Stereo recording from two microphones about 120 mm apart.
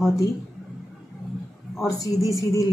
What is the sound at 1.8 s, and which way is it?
Speech, 30° left (ahead or behind).